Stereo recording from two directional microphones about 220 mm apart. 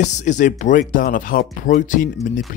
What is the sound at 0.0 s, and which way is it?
Speech, 35° left (ahead or behind).